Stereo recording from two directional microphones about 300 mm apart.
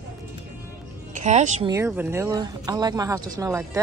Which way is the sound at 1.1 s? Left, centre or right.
Right.